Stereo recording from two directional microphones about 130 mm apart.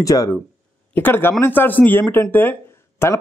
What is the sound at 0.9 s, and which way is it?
A man's voice, 15° left (ahead or behind).